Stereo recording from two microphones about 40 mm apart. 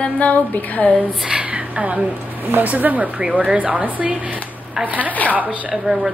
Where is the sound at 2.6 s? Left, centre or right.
Right.